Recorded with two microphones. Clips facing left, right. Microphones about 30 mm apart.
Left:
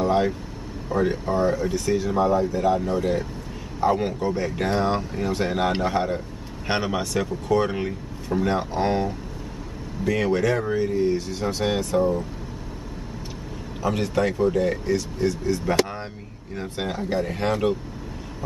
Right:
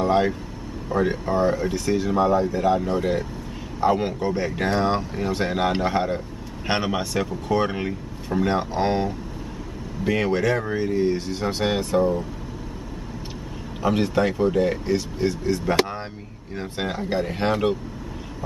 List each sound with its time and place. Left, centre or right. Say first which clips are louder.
0.0 s vehicle: right 1 dB; centre
0.8 s speech: even; centre
10.8 s speech: even; right
13.8 s speech: right 2 dB; right